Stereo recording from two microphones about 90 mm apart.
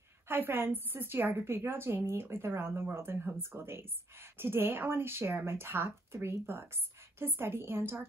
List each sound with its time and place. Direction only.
0.3 s a woman's voice: 25° right (ahead or behind)